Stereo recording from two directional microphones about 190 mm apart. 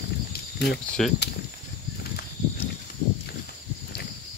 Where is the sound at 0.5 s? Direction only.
60° left (ahead or behind).